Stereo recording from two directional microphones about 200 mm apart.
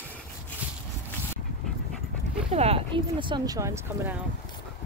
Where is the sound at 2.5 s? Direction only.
30° right (ahead or behind); by 4.2 s 10° right (ahead or behind).